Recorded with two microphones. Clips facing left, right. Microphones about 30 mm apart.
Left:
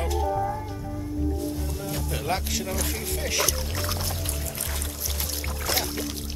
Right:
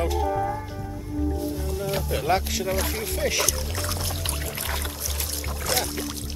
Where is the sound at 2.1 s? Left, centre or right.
Centre.